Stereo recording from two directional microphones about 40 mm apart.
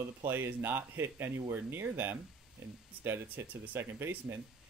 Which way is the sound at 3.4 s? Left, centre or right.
Right.